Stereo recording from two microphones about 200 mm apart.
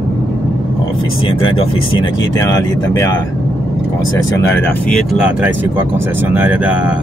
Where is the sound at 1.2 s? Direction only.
25° left (ahead or behind).